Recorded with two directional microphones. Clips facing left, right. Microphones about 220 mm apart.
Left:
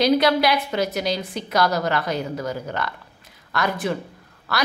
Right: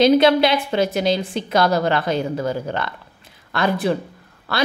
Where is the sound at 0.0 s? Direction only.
25° right (ahead or behind).